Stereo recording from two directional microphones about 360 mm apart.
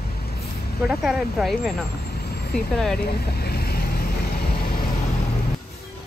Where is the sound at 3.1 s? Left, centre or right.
Left.